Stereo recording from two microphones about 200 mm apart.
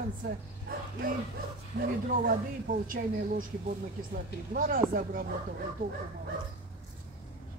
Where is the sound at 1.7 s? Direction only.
45° right (ahead or behind).